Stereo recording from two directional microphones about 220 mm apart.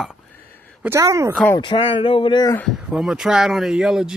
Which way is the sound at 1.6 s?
20° left (ahead or behind).